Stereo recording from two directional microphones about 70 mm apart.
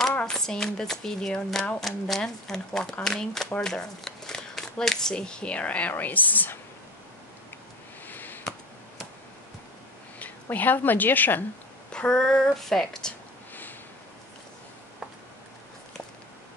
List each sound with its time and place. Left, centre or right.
0.2 s speech: centre; by 6.6 s left
8.1 s a sound: left
10.1 s speech: left
11.9 s speech: centre